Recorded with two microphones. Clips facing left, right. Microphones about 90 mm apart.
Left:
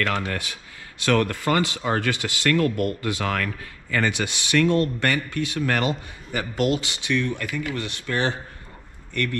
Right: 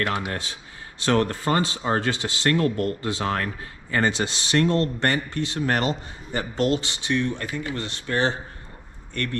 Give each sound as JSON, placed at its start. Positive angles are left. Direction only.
{"t": 0.0, "sound": "speech", "side_deg": -20}